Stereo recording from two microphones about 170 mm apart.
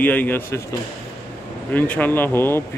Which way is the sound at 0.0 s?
10° left (ahead or behind).